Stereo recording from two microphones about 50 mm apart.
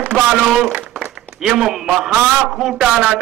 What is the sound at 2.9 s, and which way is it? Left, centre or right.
Speech, centre.